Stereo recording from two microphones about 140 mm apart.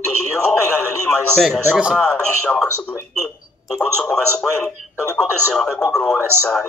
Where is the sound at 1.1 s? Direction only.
5° left (ahead or behind).